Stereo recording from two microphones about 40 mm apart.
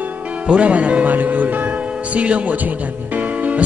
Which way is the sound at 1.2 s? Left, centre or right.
Right.